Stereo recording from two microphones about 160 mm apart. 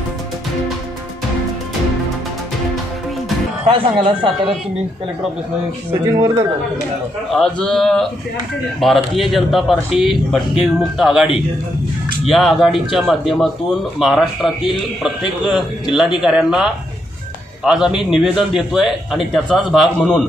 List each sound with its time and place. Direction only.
3.6 s speech: 35° right (ahead or behind)
5.9 s speech: 20° right (ahead or behind)
7.3 s a man's voice: 5° left (ahead or behind)
12.3 s a man's voice: centre (ahead or behind)